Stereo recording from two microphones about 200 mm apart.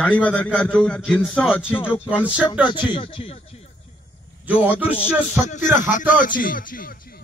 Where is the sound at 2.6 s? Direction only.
25° left (ahead or behind).